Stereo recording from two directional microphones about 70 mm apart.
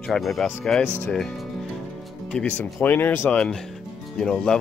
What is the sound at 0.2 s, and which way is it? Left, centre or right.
Speech, centre.